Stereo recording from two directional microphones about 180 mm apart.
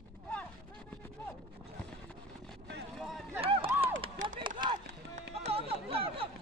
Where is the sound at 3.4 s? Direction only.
30° right (ahead or behind).